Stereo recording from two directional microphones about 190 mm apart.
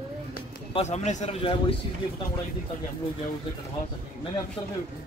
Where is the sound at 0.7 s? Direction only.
35° left (ahead or behind).